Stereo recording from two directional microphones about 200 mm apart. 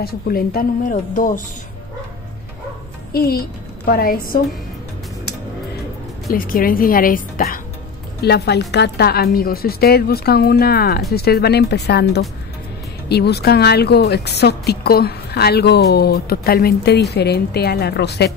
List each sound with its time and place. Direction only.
0.0 s speech: 50° left (ahead or behind)
3.1 s a woman's voice: 50° left (ahead or behind)
6.3 s speech: 45° left (ahead or behind)
8.2 s a woman's voice: 55° left (ahead or behind)